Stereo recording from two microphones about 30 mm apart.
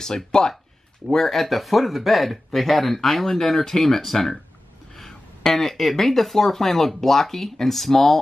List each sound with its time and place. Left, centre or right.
0.0 s speech: left
1.1 s speech: centre